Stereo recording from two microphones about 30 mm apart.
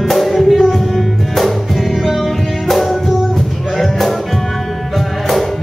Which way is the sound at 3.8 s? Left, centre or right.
Centre.